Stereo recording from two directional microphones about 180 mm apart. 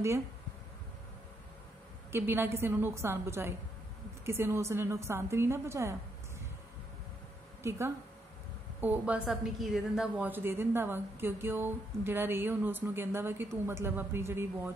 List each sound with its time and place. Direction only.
2.1 s a woman's voice: 10° right (ahead or behind)
7.6 s a woman's voice: 15° right (ahead or behind)
8.8 s a woman's voice: 10° right (ahead or behind)